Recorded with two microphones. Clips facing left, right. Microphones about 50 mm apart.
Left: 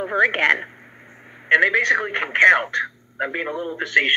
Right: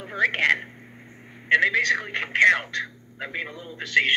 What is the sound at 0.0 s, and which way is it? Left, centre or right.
A man's voice, left.